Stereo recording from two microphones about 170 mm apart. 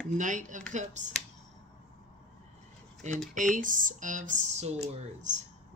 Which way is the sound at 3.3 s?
50° right (ahead or behind).